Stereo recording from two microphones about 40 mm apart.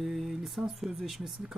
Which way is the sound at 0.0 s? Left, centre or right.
Centre.